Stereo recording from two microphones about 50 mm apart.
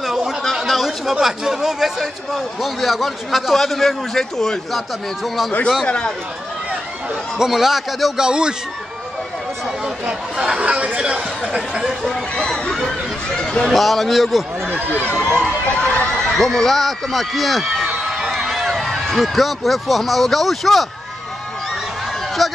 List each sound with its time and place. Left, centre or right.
0.0 s a sound: centre
1.1 s speech: centre
5.2 s speech: centre
5.9 s speech: left
7.3 s speech: centre
8.3 s speech: centre
10.0 s speech: centre
12.4 s speech: centre
13.4 s a sound: centre
13.7 s speech: centre
14.9 s speech: left
16.3 s a man's voice: centre
22.4 s speech: centre